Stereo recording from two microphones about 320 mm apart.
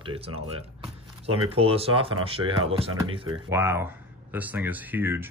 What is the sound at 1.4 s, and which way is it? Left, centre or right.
Speech, centre.